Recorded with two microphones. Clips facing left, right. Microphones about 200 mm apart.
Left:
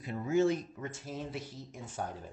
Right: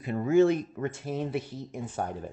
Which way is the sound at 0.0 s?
60° right (ahead or behind).